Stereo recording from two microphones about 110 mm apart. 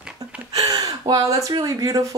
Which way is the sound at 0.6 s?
40° right (ahead or behind).